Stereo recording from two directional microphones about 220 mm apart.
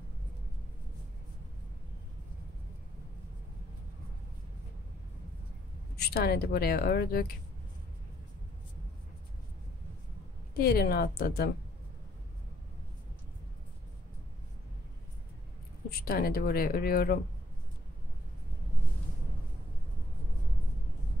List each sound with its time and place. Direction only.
5.9 s speech: 45° left (ahead or behind)
10.5 s speech: 45° left (ahead or behind)
15.9 s speech: 40° left (ahead or behind)